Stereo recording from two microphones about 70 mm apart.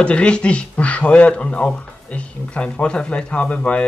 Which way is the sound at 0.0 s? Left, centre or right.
Centre.